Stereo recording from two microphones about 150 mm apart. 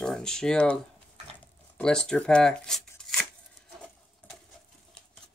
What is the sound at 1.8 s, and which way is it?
Speech, 5° left (ahead or behind).